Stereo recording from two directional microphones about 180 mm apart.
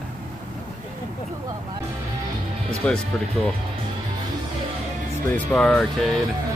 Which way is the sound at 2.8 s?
5° left (ahead or behind).